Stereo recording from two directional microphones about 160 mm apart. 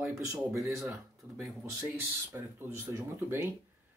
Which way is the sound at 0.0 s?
20° right (ahead or behind).